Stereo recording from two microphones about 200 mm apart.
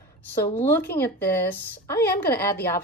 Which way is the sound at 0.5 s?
10° left (ahead or behind).